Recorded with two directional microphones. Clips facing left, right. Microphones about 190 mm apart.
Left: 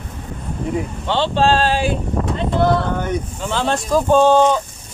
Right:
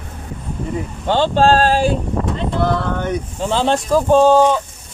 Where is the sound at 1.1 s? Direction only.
45° right (ahead or behind).